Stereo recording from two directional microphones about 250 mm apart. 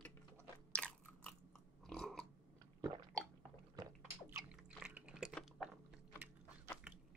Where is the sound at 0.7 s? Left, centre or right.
Centre.